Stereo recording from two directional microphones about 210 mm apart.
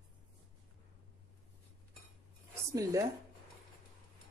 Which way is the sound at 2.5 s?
15° right (ahead or behind).